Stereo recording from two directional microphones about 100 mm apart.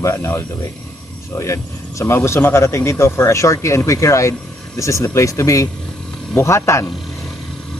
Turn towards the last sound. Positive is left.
turn(degrees=30)  # may be behind; listen again after turning